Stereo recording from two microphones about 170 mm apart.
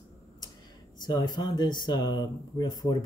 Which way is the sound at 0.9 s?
25° left (ahead or behind).